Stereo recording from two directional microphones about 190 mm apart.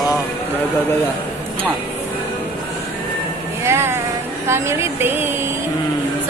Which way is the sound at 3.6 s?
15° right (ahead or behind).